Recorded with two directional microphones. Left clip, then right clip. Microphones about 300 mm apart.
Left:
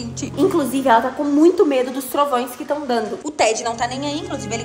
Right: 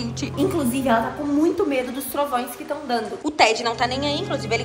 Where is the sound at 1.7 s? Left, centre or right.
Centre.